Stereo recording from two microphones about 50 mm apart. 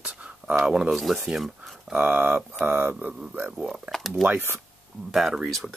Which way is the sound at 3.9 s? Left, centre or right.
Centre.